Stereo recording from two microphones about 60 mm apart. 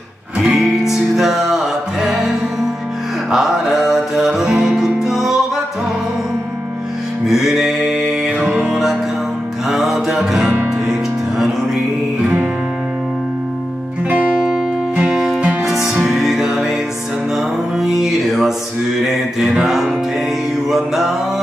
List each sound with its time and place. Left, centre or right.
0.4 s music: centre
7.2 s music: centre
8.5 s music: centre
9.7 s music: centre
15.0 s music: centre
18.9 s mantra: centre